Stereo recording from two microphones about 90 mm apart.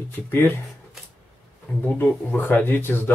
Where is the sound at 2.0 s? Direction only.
20° left (ahead or behind).